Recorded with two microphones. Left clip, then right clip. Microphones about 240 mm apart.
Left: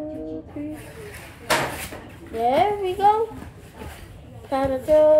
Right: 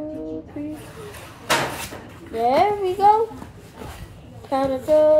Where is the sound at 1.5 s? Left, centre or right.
Right.